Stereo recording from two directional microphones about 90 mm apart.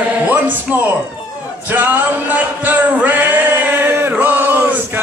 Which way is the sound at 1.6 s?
20° right (ahead or behind).